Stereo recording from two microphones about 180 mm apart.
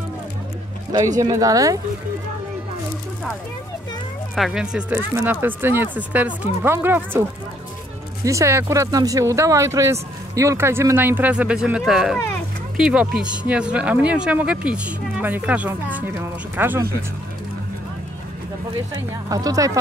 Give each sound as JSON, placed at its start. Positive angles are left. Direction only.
{"t": 1.1, "sound": "speech", "side_deg": -20}
{"t": 4.4, "sound": "speech", "side_deg": -5}
{"t": 8.3, "sound": "speech", "side_deg": -15}
{"t": 19.2, "sound": "speech", "side_deg": -20}